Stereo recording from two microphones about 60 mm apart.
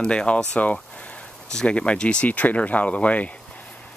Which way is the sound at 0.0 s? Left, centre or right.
Centre.